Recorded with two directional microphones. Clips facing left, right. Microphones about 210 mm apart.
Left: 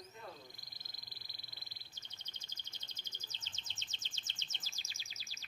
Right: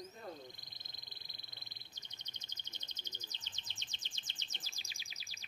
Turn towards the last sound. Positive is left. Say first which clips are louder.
# even
turn(degrees=-15)  # may be behind; listen again after turning